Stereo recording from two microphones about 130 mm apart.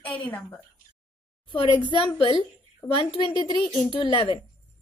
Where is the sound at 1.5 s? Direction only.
40° left (ahead or behind).